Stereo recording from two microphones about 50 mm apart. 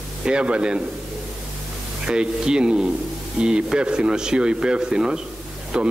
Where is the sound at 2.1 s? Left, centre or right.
Centre.